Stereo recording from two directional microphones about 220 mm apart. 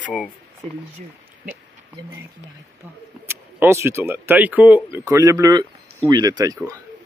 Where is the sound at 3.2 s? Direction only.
10° right (ahead or behind).